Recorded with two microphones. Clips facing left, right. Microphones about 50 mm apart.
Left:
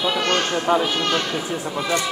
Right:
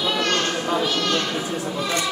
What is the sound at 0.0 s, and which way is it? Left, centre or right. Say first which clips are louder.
Children playing: left 1 dB; left.